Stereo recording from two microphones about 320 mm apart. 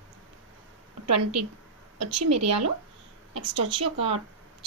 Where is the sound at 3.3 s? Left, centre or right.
Centre.